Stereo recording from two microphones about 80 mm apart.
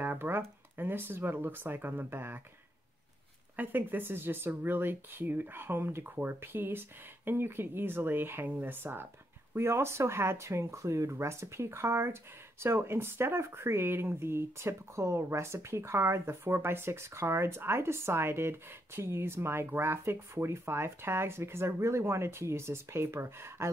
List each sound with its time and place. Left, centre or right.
0.0 s speech: right
3.5 s speech: right